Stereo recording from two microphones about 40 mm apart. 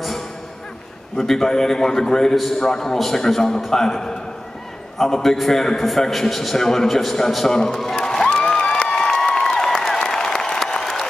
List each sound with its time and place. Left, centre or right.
1.1 s a man's voice: centre
2.3 s a man's voice: centre
7.9 s music: centre
8.3 s a sound: left